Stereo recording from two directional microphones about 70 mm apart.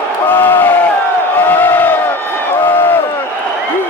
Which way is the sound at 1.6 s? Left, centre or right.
Left.